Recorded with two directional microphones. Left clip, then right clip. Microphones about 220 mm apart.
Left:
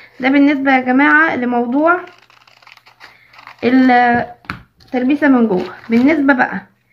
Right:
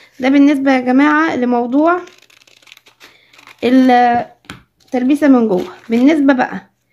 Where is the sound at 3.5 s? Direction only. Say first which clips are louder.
Right 1 dB; 50° right (ahead or behind).